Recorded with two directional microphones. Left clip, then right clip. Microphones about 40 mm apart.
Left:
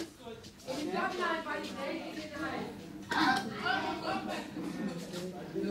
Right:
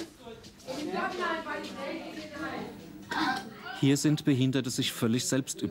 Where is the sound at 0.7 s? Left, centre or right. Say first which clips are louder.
Right 1 dB; left.